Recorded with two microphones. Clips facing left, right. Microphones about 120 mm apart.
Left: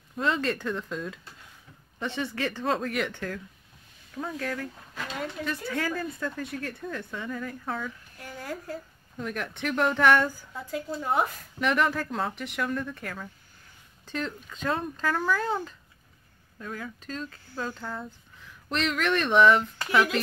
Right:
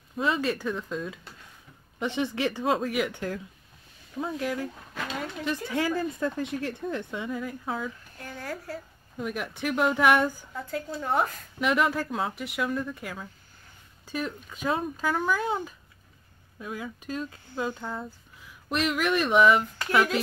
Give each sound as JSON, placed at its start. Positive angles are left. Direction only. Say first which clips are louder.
{"t": 0.2, "sound": "speech", "louder": "right 1 dB", "side_deg": -5}
{"t": 2.0, "sound": "speech", "louder": "right 3 dB", "side_deg": -15}
{"t": 4.2, "sound": "speech", "louder": "right 2 dB", "side_deg": -15}
{"t": 5.7, "sound": "speech", "louder": "right 4 dB", "side_deg": -15}
{"t": 8.2, "sound": "a child's voice", "louder": "even", "side_deg": 15}
{"t": 9.1, "sound": "speech", "louder": "right 1 dB", "side_deg": -10}
{"t": 10.9, "sound": "speech", "louder": "even", "side_deg": 0}
{"t": 17.9, "sound": "speech", "louder": "right 1 dB", "side_deg": -5}